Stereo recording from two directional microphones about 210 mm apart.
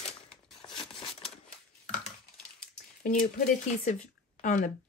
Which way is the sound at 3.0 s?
40° left (ahead or behind).